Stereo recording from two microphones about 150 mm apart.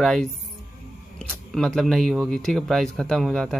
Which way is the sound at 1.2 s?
5° left (ahead or behind).